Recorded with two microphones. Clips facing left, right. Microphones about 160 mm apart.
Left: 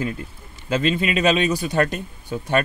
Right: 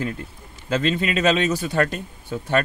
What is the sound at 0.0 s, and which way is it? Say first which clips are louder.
Speech: left 1 dB; 10° left (ahead or behind).